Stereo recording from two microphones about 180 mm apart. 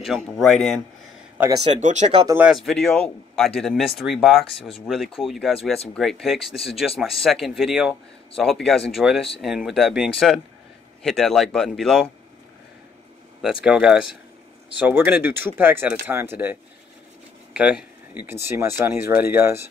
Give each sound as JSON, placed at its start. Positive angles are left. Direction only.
{"t": 0.0, "sound": "speech", "side_deg": 0}
{"t": 1.7, "sound": "speech", "side_deg": -40}
{"t": 2.2, "sound": "speech", "side_deg": -10}
{"t": 2.5, "sound": "speech", "side_deg": 0}
{"t": 13.4, "sound": "speech", "side_deg": -5}
{"t": 17.6, "sound": "speech", "side_deg": -5}